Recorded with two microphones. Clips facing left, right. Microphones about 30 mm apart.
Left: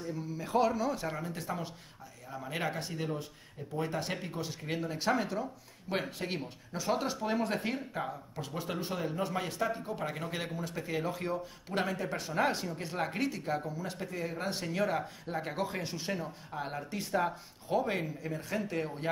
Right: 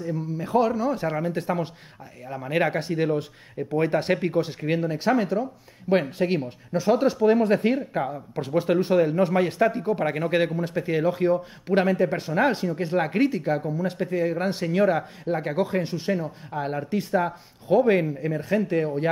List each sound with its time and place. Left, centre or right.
0.5 s speech: centre
0.9 s speech: right
4.3 s speech: right
4.8 s speech: centre
8.4 s speech: right; by 17.8 s centre
17.8 s speech: right